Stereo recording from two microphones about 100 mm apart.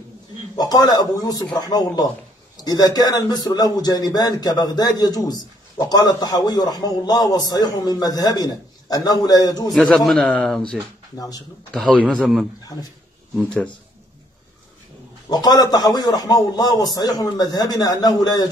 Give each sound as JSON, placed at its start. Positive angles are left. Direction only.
{"t": 0.6, "sound": "a man's voice", "side_deg": 40}
{"t": 9.7, "sound": "a man's voice", "side_deg": 0}
{"t": 11.1, "sound": "a man's voice", "side_deg": 40}
{"t": 11.7, "sound": "a man's voice", "side_deg": 10}
{"t": 15.2, "sound": "a man's voice", "side_deg": 40}